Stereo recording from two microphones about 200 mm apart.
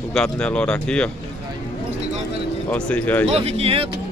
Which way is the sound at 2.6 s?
5° left (ahead or behind).